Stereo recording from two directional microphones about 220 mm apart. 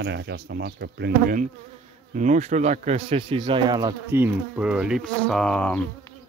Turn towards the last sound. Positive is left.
turn(degrees=5)  # may be behind; listen again after turning